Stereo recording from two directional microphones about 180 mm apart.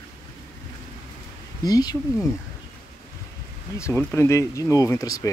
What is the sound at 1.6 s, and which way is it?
Speech, 20° left (ahead or behind).